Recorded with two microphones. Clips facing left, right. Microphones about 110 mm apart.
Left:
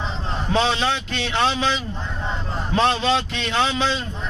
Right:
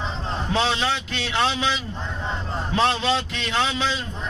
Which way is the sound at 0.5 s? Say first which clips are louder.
Left 3 dB; 5° right (ahead or behind).